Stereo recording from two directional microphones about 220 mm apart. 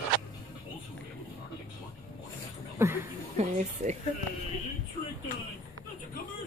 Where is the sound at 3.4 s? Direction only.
35° right (ahead or behind).